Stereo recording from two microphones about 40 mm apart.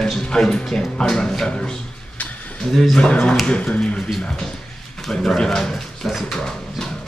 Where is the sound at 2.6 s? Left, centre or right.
Centre.